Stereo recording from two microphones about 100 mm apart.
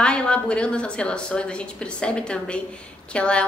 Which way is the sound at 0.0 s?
10° left (ahead or behind).